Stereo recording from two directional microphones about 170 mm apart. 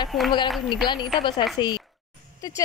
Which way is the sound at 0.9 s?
25° left (ahead or behind).